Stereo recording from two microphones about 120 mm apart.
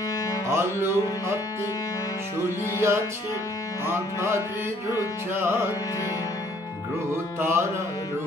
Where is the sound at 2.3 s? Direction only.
20° right (ahead or behind).